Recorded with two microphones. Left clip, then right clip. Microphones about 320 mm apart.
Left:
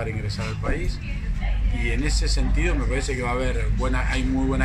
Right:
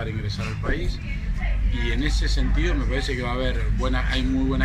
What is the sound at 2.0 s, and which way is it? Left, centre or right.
Speech, left.